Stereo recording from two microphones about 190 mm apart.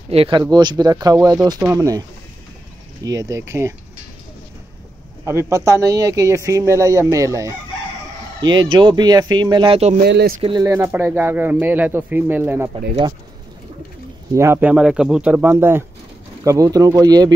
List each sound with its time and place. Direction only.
0.1 s speech: 30° right (ahead or behind)
5.5 s speech: 15° right (ahead or behind)
10.0 s speech: 60° right (ahead or behind)
10.6 s speech: 15° right (ahead or behind)
14.3 s speech: 15° right (ahead or behind)